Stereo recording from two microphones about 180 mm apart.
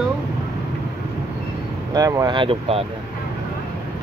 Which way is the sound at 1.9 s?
20° right (ahead or behind).